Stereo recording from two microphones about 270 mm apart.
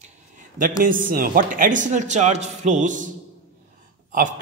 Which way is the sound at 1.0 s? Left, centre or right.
Right.